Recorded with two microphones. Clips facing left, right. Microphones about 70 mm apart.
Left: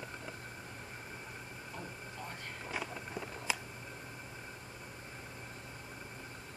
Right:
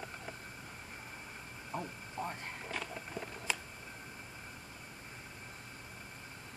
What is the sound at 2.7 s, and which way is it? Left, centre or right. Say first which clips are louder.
Walk: left 2 dB; centre.